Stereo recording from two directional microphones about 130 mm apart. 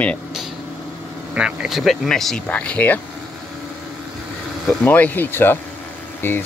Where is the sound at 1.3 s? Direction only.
5° right (ahead or behind); by 3.0 s 10° left (ahead or behind).